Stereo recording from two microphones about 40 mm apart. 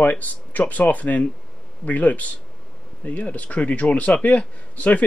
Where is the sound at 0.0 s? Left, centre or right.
Left.